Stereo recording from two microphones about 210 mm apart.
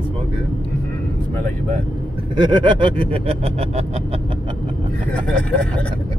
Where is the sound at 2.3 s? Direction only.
20° right (ahead or behind).